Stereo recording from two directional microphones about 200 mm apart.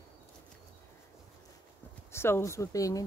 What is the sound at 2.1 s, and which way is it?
Speech, 10° left (ahead or behind).